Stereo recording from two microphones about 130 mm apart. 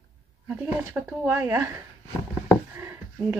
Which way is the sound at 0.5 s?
15° right (ahead or behind).